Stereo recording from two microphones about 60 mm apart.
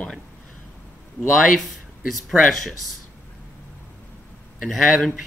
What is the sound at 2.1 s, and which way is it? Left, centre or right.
Speech, centre.